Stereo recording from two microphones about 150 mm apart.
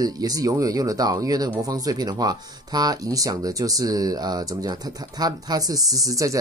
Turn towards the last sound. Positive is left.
turn(degrees=-20)  # may be behind; listen again after turning